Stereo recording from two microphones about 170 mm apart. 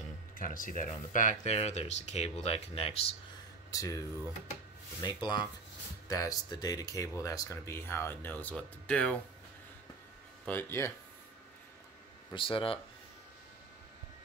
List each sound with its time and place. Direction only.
0.4 s speech: 50° left (ahead or behind); by 3.2 s 35° left (ahead or behind)
3.7 s speech: 20° left (ahead or behind)
5.0 s speech: 25° left (ahead or behind); by 9.2 s 5° left (ahead or behind)
10.4 s speech: 10° left (ahead or behind)
12.4 s speech: 30° left (ahead or behind)